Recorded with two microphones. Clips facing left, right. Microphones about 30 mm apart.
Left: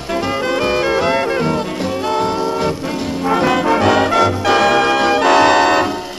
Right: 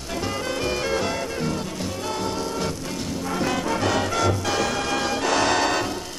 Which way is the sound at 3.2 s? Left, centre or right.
Left.